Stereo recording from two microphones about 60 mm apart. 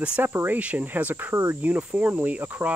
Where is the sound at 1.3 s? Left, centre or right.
Right.